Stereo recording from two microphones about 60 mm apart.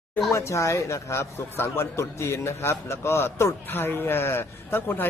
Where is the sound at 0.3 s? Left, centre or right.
Left.